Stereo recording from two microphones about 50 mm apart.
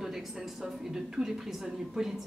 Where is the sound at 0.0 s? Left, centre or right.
Centre.